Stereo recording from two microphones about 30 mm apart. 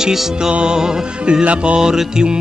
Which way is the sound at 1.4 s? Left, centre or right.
Right.